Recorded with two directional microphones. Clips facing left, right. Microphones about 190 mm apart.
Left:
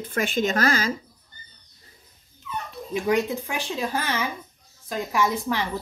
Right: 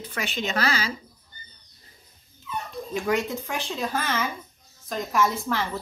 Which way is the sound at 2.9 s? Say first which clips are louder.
Left 3 dB; 15° left (ahead or behind).